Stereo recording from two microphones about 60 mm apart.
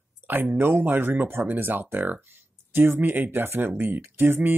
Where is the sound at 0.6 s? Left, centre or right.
Right.